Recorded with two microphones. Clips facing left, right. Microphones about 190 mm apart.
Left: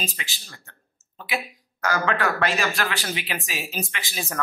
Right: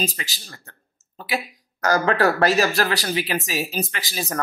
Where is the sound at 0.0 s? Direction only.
40° right (ahead or behind).